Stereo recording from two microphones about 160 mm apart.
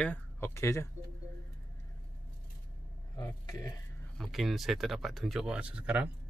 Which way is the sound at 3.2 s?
25° left (ahead or behind).